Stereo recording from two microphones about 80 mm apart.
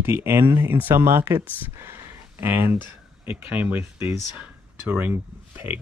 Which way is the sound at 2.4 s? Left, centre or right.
Right.